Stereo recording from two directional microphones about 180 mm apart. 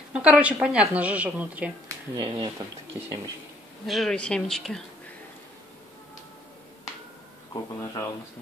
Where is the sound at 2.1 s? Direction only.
20° right (ahead or behind).